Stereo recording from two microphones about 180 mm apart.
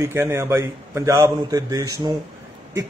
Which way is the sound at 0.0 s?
15° right (ahead or behind).